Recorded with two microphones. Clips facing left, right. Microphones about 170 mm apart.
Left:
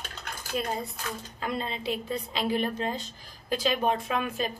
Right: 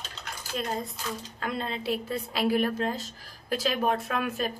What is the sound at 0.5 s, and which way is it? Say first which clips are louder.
A woman's voice: left 1 dB; 10° left (ahead or behind).